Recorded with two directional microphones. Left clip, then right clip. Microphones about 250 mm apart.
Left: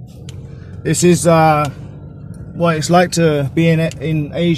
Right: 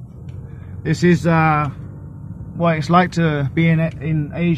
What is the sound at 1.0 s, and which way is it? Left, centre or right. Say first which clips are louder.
Speech: left 5 dB; centre.